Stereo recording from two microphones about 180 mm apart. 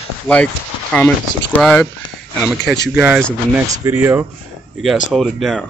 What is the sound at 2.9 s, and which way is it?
Speech, 5° right (ahead or behind).